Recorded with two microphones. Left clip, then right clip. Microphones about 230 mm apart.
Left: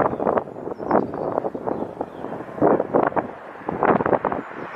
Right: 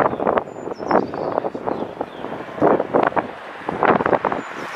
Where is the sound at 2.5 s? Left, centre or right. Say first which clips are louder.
Right 2 dB; centre.